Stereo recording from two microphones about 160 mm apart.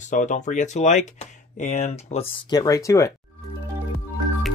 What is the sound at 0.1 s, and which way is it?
Speech, 50° left (ahead or behind).